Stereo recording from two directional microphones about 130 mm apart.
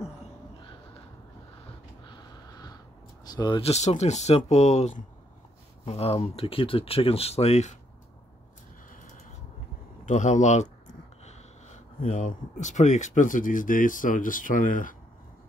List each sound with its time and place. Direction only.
2.0 s sniff: 35° left (ahead or behind)
3.3 s speech: 35° left (ahead or behind)
3.6 s speech: 60° left (ahead or behind)
10.0 s speech: 70° left (ahead or behind); by 15.0 s 90° left